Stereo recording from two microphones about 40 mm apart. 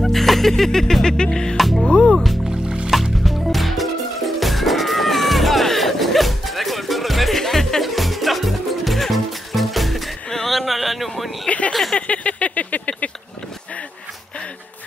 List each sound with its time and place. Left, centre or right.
0.0 s music: centre
1.6 s music: centre
1.9 s music: left
2.9 s music: centre
10.3 s a sound: centre
11.4 s a sound: left